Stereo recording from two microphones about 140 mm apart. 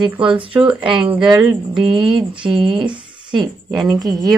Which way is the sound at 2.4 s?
35° right (ahead or behind).